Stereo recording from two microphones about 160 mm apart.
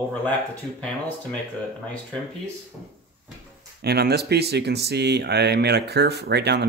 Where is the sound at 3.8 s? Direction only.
90° right.